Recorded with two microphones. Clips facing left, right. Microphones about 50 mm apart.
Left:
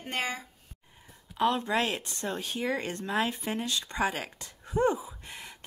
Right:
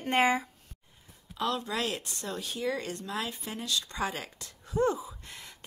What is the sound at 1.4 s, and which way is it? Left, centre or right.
Speech, left.